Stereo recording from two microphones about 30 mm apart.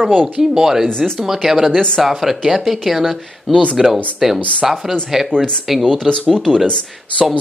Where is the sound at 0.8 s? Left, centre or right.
Left.